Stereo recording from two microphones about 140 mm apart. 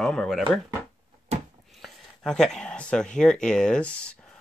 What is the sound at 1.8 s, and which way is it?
Speech, 5° left (ahead or behind).